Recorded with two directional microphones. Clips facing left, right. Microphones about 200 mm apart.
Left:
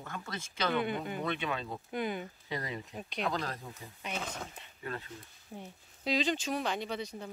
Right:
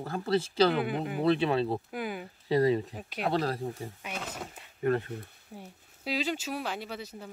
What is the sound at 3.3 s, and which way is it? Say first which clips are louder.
Speech: right 7 dB; 30° right (ahead or behind).